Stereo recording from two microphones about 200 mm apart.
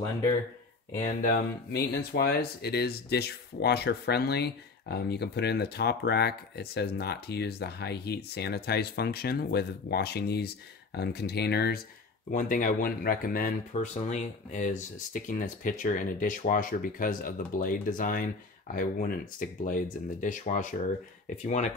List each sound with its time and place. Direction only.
0.9 s speech: 40° left (ahead or behind)
12.3 s speech: 40° left (ahead or behind)
13.7 s speech: 30° left (ahead or behind)